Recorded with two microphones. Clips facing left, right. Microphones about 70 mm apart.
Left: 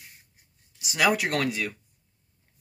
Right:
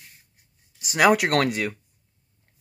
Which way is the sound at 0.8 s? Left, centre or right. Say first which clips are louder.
Right 5 dB; right.